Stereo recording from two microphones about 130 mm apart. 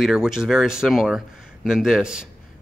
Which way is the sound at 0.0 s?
5° right (ahead or behind).